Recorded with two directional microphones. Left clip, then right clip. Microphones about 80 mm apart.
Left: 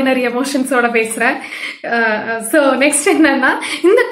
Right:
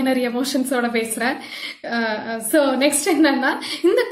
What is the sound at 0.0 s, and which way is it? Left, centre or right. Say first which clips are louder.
A woman's voice: left 6 dB; right.